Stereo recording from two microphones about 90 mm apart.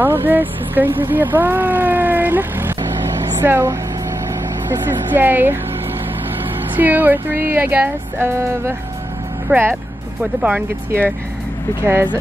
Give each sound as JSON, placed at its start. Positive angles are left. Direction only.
{"t": 0.0, "sound": "speech", "side_deg": -25}
{"t": 4.8, "sound": "speech", "side_deg": -25}
{"t": 6.8, "sound": "speech", "side_deg": -20}
{"t": 11.8, "sound": "speech", "side_deg": -25}